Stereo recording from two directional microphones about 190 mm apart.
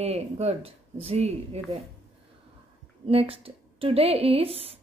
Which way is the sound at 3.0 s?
30° right (ahead or behind).